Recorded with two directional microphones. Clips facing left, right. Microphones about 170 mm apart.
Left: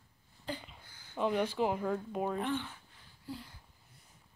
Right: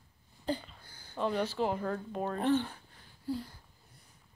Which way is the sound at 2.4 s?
40° right (ahead or behind).